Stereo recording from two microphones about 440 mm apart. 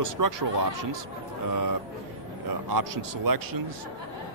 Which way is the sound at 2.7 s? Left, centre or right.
Right.